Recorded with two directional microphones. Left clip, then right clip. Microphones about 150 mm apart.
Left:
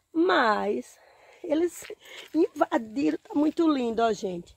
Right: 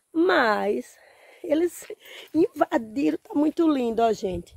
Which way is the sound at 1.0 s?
30° right (ahead or behind).